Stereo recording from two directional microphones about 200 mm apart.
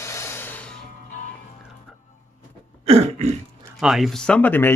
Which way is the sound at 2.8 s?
30° right (ahead or behind).